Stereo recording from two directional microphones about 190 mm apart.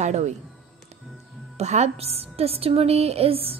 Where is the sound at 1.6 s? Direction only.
35° right (ahead or behind).